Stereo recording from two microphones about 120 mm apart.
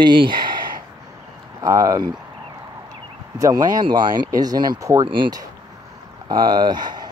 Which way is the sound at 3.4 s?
30° right (ahead or behind).